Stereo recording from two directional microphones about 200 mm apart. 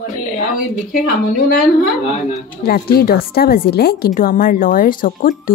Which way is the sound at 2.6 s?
50° left (ahead or behind).